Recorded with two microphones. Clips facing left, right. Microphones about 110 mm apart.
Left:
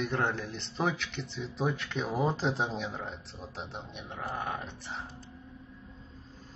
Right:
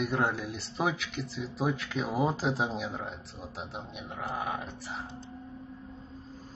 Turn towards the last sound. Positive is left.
turn(degrees=-5)  # may be behind; listen again after turning